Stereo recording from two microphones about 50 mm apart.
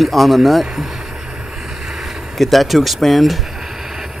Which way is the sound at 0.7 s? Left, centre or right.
Centre.